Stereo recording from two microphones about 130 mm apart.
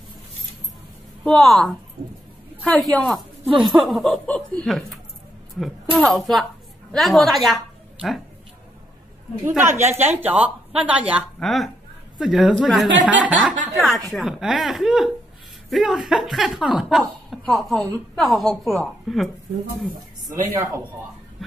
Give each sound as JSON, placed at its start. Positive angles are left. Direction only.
{"t": 1.2, "sound": "a woman's voice", "side_deg": 5}
{"t": 9.4, "sound": "a woman's voice", "side_deg": -15}
{"t": 11.3, "sound": "speech", "side_deg": 0}
{"t": 13.2, "sound": "a woman's voice", "side_deg": -10}
{"t": 13.7, "sound": "speech", "side_deg": 0}
{"t": 20.2, "sound": "a man's voice", "side_deg": -25}
{"t": 21.4, "sound": "a sound", "side_deg": 0}